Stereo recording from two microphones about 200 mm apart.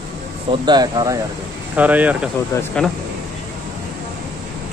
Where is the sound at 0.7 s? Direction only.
20° right (ahead or behind).